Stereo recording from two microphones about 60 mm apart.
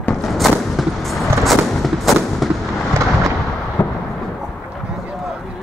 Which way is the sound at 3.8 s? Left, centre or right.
Left.